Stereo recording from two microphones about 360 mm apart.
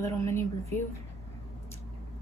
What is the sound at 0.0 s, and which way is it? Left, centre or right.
Speech, centre.